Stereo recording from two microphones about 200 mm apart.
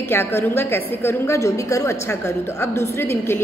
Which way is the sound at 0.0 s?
10° left (ahead or behind).